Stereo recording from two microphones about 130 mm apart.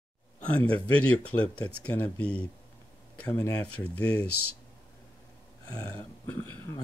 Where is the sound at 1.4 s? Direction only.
10° left (ahead or behind).